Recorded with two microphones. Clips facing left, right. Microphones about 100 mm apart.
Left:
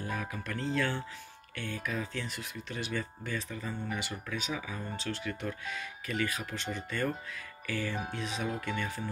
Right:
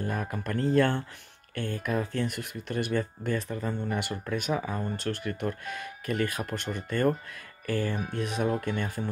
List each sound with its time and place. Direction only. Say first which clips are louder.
0.0 s speech: right 5 dB; 50° right (ahead or behind)